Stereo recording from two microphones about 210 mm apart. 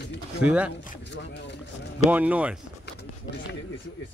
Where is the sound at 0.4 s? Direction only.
5° right (ahead or behind).